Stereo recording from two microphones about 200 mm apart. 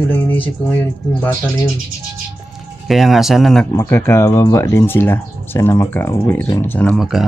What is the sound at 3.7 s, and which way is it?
Speech, 10° left (ahead or behind).